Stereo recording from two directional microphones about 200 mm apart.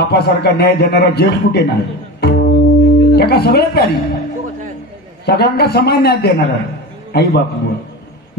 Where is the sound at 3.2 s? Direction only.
50° left (ahead or behind).